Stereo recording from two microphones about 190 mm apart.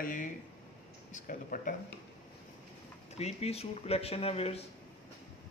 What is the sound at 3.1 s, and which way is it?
Speech, 35° left (ahead or behind).